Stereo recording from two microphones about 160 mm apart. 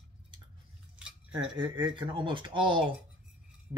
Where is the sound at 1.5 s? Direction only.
30° right (ahead or behind).